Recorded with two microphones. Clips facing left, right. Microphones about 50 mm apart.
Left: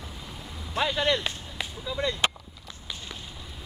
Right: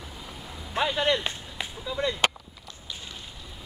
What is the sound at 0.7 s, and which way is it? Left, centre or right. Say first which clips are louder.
Speech: right 1 dB; centre.